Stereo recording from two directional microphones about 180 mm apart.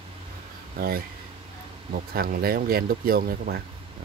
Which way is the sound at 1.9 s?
55° right (ahead or behind).